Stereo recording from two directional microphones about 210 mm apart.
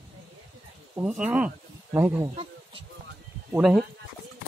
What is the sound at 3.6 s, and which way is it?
Speech, centre (ahead or behind).